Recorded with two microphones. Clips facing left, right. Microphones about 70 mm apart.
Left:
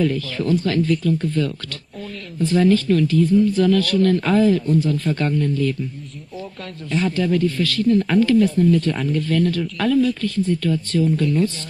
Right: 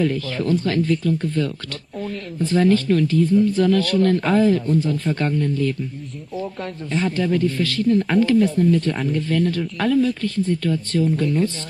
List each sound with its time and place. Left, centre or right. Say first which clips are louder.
0.0 s a woman's voice: even; right
6.9 s a woman's voice: left 1 dB; right
10.9 s a woman's voice: left 1 dB; right